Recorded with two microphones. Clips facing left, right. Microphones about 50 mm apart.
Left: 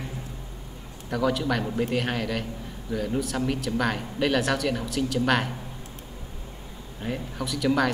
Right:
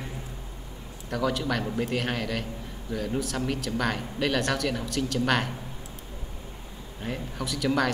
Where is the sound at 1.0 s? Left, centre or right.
Centre.